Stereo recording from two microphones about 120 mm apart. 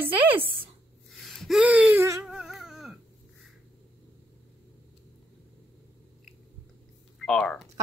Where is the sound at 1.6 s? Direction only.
10° right (ahead or behind).